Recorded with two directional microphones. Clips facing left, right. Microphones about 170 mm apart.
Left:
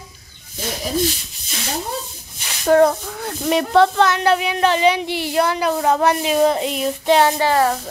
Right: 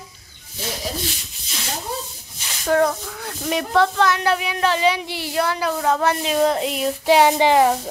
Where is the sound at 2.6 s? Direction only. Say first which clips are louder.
Left 5 dB; 35° left (ahead or behind).